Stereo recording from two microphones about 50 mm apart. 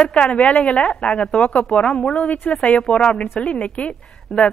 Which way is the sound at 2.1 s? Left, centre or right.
Left.